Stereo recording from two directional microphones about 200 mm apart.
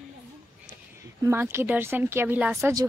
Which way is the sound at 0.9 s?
10° right (ahead or behind).